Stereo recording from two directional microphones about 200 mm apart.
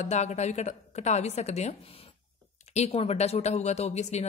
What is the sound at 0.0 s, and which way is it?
Speech, 35° left (ahead or behind).